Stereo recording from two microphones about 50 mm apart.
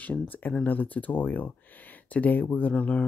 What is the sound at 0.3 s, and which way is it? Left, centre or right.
Speech, left.